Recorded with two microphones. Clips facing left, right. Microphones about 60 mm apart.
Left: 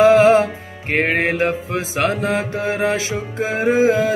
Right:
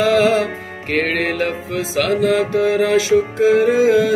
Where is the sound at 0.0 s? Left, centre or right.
Left.